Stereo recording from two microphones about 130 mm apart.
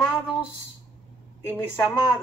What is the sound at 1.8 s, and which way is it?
Speech, centre (ahead or behind).